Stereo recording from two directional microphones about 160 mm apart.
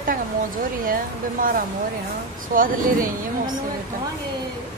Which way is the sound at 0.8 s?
60° right (ahead or behind).